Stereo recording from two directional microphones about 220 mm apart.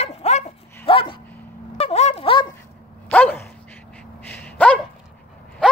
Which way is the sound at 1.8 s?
30° left (ahead or behind).